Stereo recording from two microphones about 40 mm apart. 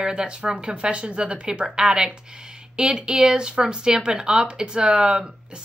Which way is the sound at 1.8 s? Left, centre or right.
Centre.